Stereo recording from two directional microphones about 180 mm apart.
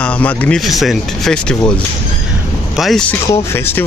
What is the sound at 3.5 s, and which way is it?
Speech, 15° left (ahead or behind).